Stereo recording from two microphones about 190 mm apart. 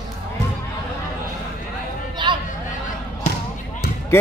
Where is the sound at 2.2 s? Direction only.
25° right (ahead or behind).